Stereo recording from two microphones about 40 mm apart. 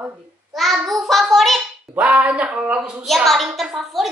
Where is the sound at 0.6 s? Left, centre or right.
Centre.